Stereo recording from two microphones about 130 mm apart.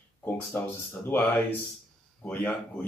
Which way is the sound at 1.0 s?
15° left (ahead or behind).